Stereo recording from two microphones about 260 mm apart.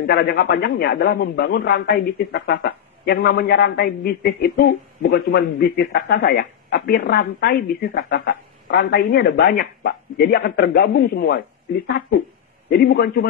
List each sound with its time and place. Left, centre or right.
0.0 s a man's voice: left
12.6 s a man's voice: left